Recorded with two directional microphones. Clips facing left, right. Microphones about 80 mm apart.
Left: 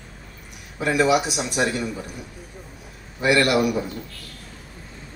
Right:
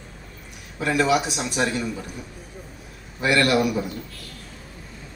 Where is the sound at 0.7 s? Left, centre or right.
Centre.